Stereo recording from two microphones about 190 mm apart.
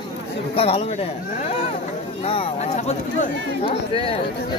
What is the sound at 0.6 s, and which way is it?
Speech, 30° left (ahead or behind).